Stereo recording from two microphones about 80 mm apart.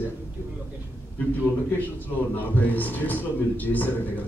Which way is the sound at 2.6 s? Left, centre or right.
Left.